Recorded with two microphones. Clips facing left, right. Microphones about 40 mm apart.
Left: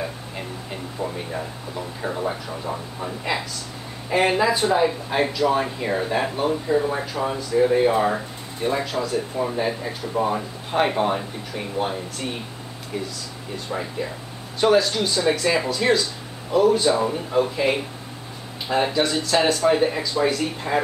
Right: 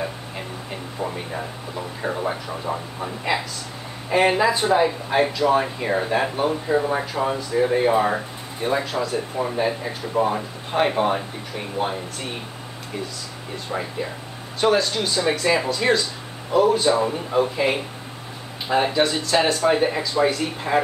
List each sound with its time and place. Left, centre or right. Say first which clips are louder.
0.7 s speech: right 1 dB; centre
9.4 s speech: right 3 dB; centre
14.6 s speech: left 1 dB; centre